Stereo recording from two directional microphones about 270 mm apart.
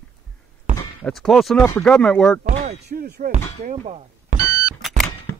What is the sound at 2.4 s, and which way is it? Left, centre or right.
Speech, right.